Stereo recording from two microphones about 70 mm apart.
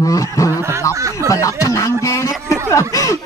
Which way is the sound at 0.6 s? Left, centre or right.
Right.